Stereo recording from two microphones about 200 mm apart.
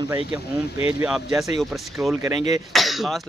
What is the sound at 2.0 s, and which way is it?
Speech, 15° right (ahead or behind).